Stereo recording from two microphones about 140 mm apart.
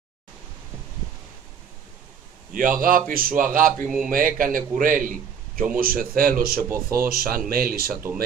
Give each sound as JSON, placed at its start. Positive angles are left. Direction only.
{"t": 2.5, "sound": "a man's voice", "side_deg": -80}
{"t": 5.8, "sound": "speech", "side_deg": -90}
{"t": 6.7, "sound": "speech", "side_deg": -15}
{"t": 7.1, "sound": "speech", "side_deg": -90}